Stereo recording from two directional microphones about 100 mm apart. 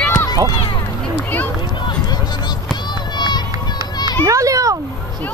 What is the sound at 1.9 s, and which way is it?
Run, 45° left (ahead or behind).